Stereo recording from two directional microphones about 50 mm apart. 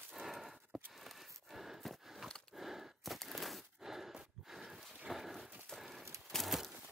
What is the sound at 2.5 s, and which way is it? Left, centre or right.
Gasp, centre.